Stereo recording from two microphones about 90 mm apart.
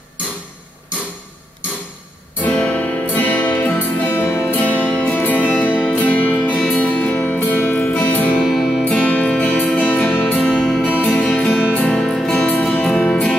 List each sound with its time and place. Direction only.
2.4 s music: 15° left (ahead or behind)
8.5 s music: 5° left (ahead or behind)
8.8 s music: 15° left (ahead or behind)